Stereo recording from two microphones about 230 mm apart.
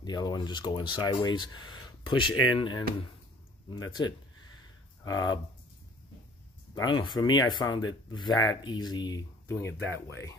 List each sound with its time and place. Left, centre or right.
0.0 s speech: centre
6.7 s speech: centre